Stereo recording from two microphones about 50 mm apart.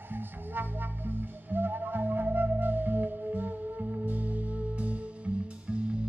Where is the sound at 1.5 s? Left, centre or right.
Right.